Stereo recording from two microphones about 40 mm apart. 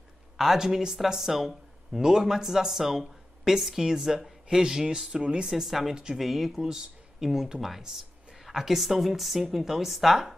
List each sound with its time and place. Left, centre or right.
0.4 s speech: centre
2.0 s speech: centre
5.5 s speech: centre